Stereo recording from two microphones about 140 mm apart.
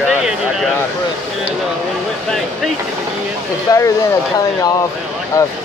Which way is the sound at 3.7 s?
25° left (ahead or behind).